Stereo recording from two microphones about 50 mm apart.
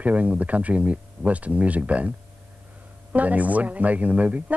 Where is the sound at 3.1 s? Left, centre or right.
Right.